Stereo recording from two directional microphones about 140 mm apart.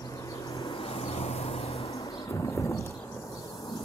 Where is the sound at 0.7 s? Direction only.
45° left (ahead or behind).